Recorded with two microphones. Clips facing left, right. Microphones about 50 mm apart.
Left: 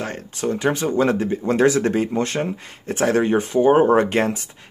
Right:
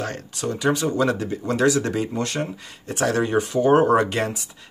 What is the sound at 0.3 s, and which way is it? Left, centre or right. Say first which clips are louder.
Speech: left 2 dB; left.